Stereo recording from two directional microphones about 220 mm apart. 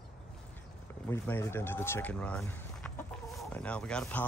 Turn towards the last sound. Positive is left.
turn(degrees=5)  # may be behind; listen again after turning